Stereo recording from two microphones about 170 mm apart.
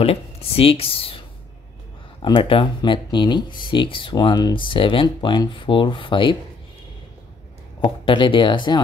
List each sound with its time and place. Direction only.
0.0 s speech: 35° left (ahead or behind)
2.2 s speech: 30° left (ahead or behind)
7.8 s speech: 30° left (ahead or behind)